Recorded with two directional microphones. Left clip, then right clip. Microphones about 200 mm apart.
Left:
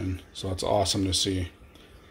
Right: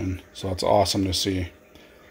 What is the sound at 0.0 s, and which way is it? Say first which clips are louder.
Speech: right 3 dB; 5° right (ahead or behind).